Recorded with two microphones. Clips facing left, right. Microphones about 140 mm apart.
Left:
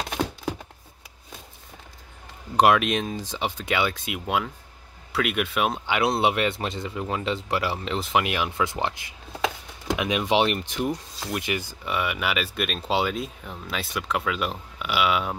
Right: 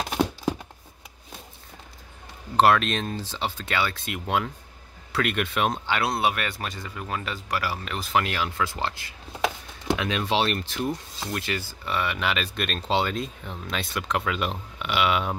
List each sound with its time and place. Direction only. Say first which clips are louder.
2.5 s speech: left 1 dB; 15° left (ahead or behind)